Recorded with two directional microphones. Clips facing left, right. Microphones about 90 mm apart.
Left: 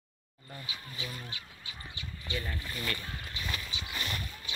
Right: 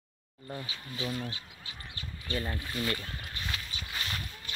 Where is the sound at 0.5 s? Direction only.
35° right (ahead or behind).